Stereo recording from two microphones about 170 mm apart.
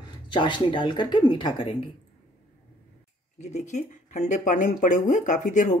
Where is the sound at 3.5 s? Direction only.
45° left (ahead or behind).